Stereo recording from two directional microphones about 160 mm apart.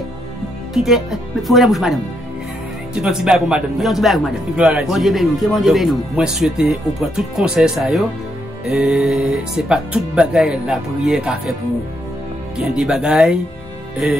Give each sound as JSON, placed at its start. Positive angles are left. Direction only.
{"t": 0.7, "sound": "speech", "side_deg": 0}
{"t": 12.5, "sound": "speech", "side_deg": -5}